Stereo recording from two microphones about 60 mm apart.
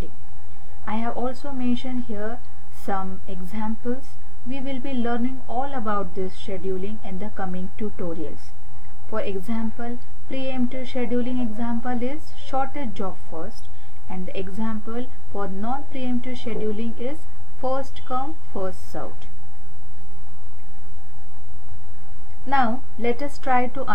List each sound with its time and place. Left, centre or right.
0.8 s speech: centre
1.3 s a woman's voice: centre
4.6 s a woman's voice: right; by 6.5 s centre
6.5 s a woman's voice: right
9.1 s speech: right
9.5 s a woman's voice: centre
11.0 s speech: right
11.5 s a woman's voice: centre
14.0 s a woman's voice: centre
15.9 s speech: centre
22.5 s a woman's voice: centre
23.5 s a woman's voice: centre